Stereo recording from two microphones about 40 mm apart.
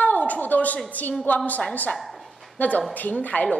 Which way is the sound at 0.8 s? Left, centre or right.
Left.